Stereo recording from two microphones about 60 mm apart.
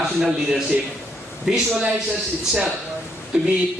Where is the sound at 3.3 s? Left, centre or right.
Centre.